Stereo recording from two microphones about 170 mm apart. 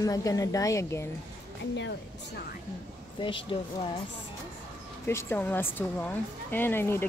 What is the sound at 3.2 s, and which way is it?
Speech, 30° left (ahead or behind).